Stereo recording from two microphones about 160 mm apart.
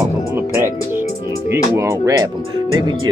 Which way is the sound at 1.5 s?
20° right (ahead or behind).